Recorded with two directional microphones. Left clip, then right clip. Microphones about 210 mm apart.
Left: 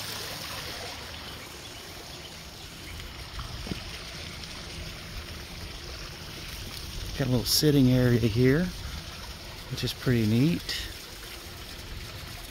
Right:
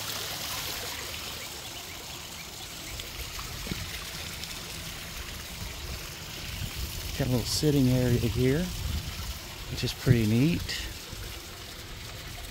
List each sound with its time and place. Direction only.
0.5 s a sound: 45° right (ahead or behind)
7.2 s speech: 10° left (ahead or behind)
9.8 s speech: 5° right (ahead or behind)